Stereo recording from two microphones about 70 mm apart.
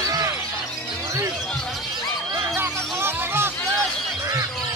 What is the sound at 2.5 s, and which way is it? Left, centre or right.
Chicken, right.